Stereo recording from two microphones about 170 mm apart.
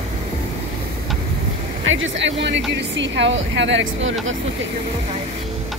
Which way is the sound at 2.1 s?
90° right.